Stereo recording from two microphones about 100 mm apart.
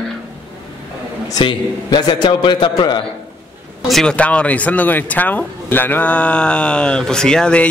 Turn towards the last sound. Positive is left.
turn(degrees=10)  # may be behind; listen again after turning